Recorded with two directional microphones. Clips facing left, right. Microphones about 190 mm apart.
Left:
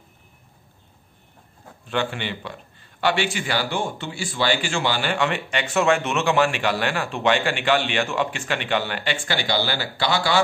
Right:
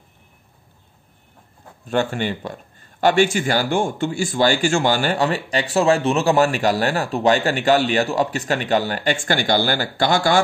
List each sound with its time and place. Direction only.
1.9 s speech: 45° right (ahead or behind)